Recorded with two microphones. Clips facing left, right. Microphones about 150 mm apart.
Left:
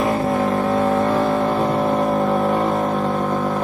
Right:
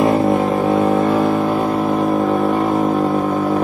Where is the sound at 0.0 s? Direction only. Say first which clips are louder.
Right 5 dB; 20° right (ahead or behind).